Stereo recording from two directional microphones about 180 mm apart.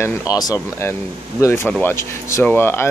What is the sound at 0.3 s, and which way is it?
Speech, 20° left (ahead or behind).